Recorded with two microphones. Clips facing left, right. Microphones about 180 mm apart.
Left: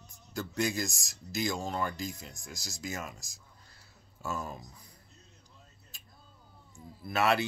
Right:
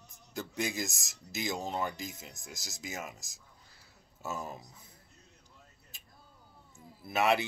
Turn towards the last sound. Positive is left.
turn(degrees=-15)  # may be behind; listen again after turning